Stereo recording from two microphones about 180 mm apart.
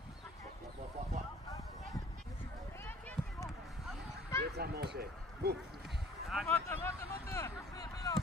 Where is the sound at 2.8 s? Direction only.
10° left (ahead or behind).